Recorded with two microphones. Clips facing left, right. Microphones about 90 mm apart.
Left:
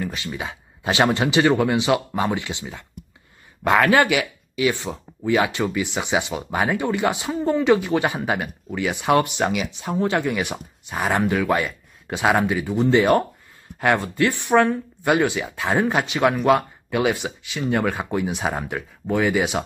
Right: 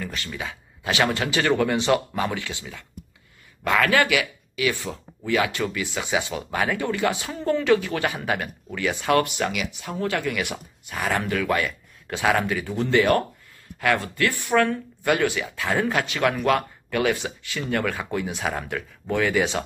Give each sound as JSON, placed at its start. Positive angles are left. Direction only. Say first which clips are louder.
{"t": 0.0, "sound": "speech", "louder": "left 3 dB", "side_deg": 20}